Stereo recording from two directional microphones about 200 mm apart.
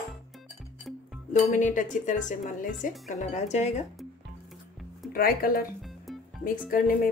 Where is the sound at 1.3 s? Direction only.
40° left (ahead or behind).